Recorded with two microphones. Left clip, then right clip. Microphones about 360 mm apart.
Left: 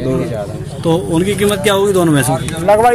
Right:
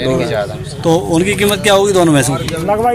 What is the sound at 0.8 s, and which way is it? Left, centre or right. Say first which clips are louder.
Speech: right 2 dB; centre.